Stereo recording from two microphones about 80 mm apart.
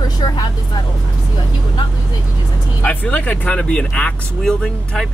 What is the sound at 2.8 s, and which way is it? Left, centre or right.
Speech, centre.